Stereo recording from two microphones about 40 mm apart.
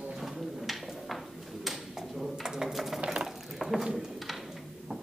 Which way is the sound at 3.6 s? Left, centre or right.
Centre.